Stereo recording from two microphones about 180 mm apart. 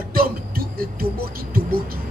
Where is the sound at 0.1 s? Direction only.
55° right (ahead or behind).